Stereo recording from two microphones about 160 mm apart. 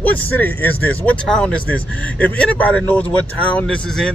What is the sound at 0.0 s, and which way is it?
Speech, 10° left (ahead or behind).